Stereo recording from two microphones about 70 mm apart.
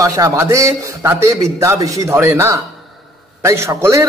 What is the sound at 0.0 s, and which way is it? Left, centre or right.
A man's voice, right.